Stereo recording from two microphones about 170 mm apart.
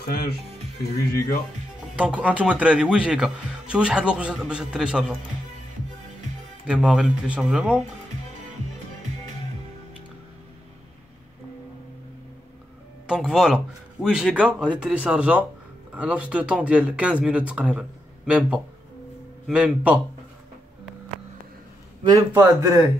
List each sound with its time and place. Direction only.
0.0 s speech: 65° left (ahead or behind)
2.0 s speech: 10° right (ahead or behind)
6.7 s speech: 5° right (ahead or behind)
13.0 s speech: 5° right (ahead or behind)
22.0 s a man's voice: 20° right (ahead or behind)